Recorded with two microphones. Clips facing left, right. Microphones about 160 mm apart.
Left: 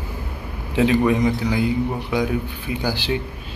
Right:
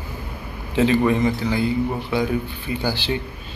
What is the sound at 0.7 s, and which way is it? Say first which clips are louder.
Speech: even; 5° left (ahead or behind).